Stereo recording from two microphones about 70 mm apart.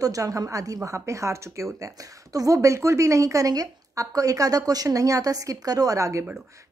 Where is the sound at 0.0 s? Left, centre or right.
Right.